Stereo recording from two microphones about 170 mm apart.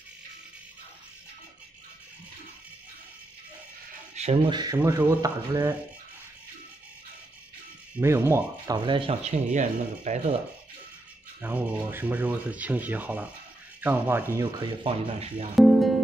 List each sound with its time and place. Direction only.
4.1 s a sound: 40° right (ahead or behind)
4.5 s speech: 20° right (ahead or behind)
8.0 s speech: 15° right (ahead or behind)
8.7 s speech: 30° right (ahead or behind); by 10.3 s 45° right (ahead or behind)
11.4 s speech: 10° right (ahead or behind)
14.4 s speech: 30° right (ahead or behind)
15.5 s speech: centre (ahead or behind)